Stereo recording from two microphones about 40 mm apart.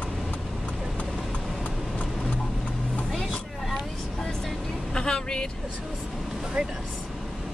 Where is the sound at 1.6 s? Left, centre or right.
Left.